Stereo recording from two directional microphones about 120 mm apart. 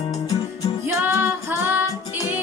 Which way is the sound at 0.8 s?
20° right (ahead or behind).